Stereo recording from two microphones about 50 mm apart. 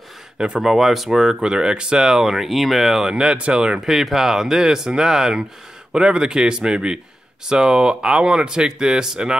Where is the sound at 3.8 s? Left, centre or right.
Centre.